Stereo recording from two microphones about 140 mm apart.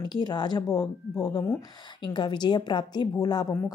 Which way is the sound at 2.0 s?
30° left (ahead or behind).